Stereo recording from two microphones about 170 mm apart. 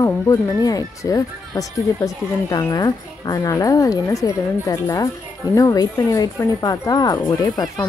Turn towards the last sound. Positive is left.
turn(degrees=20)  # may be behind; listen again after turning